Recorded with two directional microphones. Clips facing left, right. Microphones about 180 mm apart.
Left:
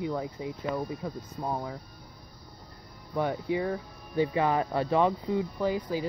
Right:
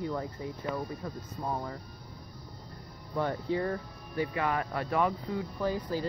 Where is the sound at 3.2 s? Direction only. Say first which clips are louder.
Left 2 dB; 10° left (ahead or behind).